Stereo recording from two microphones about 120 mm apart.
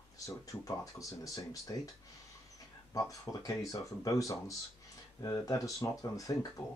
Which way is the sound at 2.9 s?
30° left (ahead or behind).